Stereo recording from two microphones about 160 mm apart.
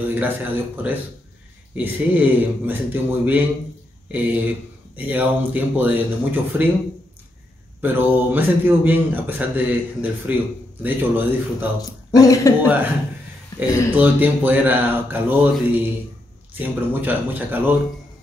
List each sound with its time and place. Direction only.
0.0 s speech: 10° right (ahead or behind)
7.8 s speech: 10° right (ahead or behind)
11.8 s speech: 20° left (ahead or behind)
13.6 s speech: 10° right (ahead or behind)